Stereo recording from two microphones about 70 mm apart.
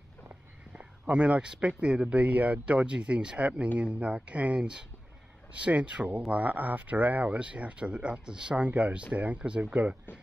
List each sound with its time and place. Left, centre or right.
0.7 s a man's voice: centre